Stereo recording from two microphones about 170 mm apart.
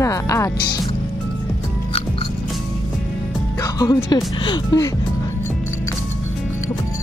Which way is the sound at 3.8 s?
25° left (ahead or behind).